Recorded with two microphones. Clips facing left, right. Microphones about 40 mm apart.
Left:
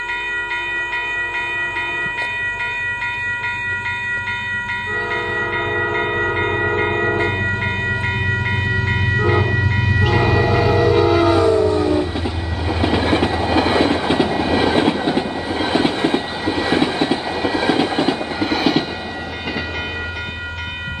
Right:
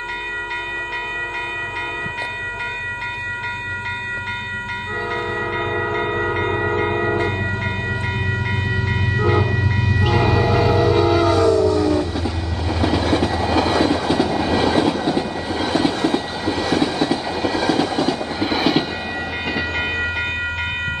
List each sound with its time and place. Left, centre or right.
5.7 s train: centre
6.3 s a sound: centre
9.1 s train: centre; by 18.1 s left
18.4 s train: centre